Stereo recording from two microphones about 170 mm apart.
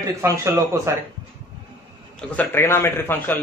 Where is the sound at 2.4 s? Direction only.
15° left (ahead or behind).